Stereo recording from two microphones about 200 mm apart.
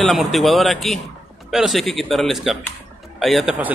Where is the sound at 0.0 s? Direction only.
Centre (ahead or behind).